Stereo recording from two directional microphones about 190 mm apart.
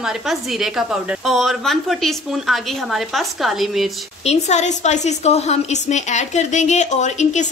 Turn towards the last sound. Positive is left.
turn(degrees=40)  # may be behind; listen again after turning